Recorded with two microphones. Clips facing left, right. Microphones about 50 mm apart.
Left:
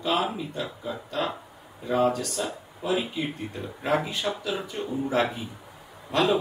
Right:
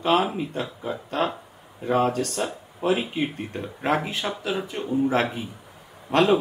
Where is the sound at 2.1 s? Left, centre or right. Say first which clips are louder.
Right 4 dB; right.